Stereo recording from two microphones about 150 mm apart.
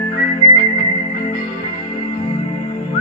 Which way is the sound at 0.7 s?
55° left (ahead or behind).